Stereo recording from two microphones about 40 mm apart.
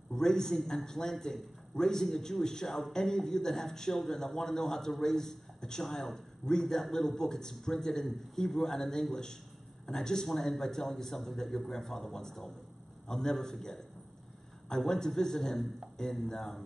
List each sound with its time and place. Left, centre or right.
0.1 s a man's voice: centre
14.9 s a man's voice: centre